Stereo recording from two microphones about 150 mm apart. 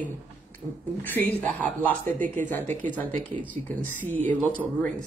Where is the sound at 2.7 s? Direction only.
55° right (ahead or behind).